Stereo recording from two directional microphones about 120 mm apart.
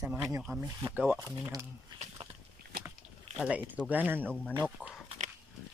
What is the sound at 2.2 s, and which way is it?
Walk, 55° right (ahead or behind).